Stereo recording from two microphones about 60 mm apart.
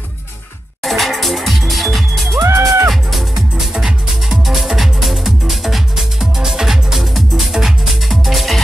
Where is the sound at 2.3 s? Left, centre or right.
Right.